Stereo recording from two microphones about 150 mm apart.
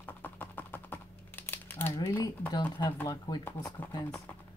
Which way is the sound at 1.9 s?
25° left (ahead or behind).